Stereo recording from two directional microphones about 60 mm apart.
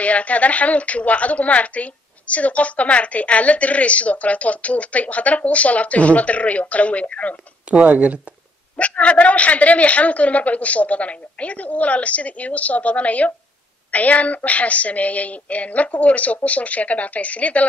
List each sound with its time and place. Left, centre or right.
0.0 s a woman's voice: left
7.7 s speech: right
8.7 s a woman's voice: left